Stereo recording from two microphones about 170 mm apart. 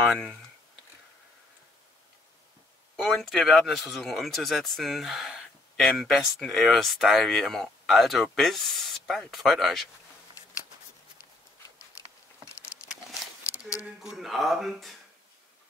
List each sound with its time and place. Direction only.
0.0 s speech: centre (ahead or behind)
3.0 s speech: centre (ahead or behind)
13.4 s a sound: 20° left (ahead or behind)
14.1 s speech: centre (ahead or behind)